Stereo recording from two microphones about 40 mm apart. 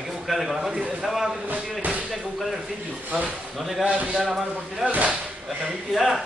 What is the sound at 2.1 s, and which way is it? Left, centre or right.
Slam, centre.